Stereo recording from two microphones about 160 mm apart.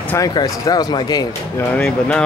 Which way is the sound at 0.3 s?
25° left (ahead or behind).